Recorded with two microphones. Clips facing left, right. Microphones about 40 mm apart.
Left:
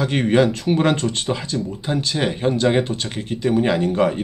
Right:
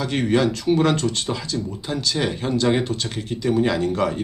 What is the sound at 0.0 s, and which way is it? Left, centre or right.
Speech, left.